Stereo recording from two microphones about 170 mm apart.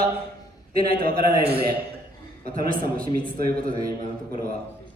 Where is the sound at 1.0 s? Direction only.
65° right (ahead or behind).